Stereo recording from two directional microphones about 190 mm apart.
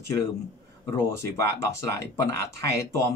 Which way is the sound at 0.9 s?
15° left (ahead or behind).